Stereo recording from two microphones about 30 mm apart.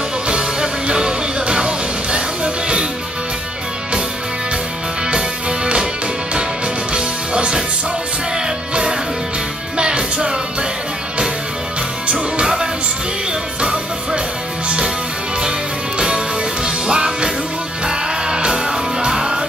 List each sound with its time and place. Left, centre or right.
0.3 s music: right
6.9 s music: right
9.8 s music: right
12.1 s music: right
16.6 s music: right